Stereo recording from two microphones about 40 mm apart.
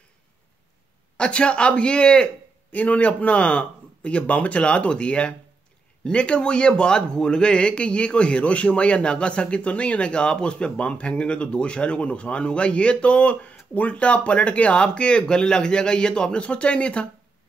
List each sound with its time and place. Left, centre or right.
1.1 s speech: left
2.7 s speech: left